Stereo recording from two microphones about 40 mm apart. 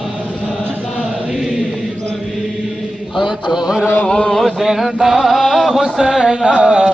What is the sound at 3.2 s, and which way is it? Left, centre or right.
Mantra, centre.